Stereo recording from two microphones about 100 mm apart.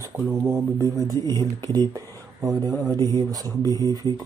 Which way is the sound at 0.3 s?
30° right (ahead or behind).